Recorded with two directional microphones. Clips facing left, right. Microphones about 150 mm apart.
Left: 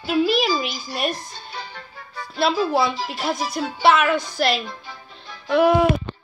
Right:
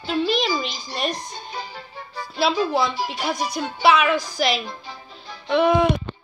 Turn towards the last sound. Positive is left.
turn(degrees=5)  # may be behind; listen again after turning